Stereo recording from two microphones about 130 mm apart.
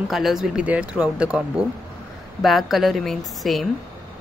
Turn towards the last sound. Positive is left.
turn(degrees=0)  # may be behind; listen again after turning